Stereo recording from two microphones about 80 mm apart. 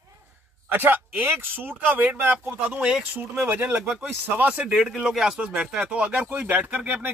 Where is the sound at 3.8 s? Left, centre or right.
Centre.